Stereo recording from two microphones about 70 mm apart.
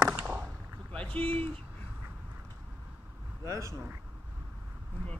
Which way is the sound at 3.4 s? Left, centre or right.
Right.